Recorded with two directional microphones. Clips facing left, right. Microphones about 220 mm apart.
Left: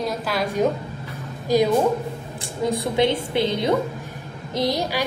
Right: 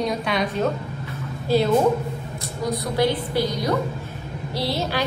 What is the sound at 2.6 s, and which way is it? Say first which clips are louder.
A woman's voice: left 2 dB; 25° left (ahead or behind).